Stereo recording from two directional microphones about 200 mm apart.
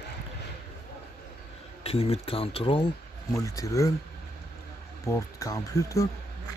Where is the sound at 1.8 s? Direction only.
30° left (ahead or behind).